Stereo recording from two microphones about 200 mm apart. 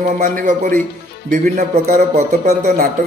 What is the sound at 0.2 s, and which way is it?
Speech, 40° right (ahead or behind).